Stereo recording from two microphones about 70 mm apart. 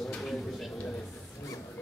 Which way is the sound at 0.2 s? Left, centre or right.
Centre.